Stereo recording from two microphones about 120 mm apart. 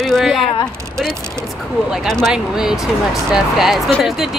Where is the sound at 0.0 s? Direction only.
Centre (ahead or behind).